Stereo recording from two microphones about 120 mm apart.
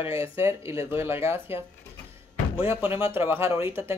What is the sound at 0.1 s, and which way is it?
Speech, 20° right (ahead or behind).